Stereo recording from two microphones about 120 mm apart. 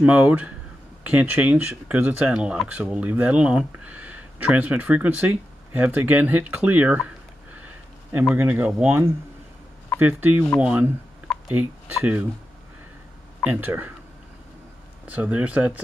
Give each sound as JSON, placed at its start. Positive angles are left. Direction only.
{"t": 0.0, "sound": "speech", "side_deg": -10}
{"t": 8.4, "sound": "speech", "side_deg": -15}
{"t": 9.9, "sound": "speech", "side_deg": -15}
{"t": 13.4, "sound": "speech", "side_deg": -15}
{"t": 15.0, "sound": "speech", "side_deg": -10}